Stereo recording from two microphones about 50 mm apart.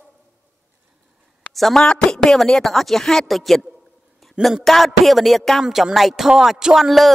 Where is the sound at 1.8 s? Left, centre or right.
Centre.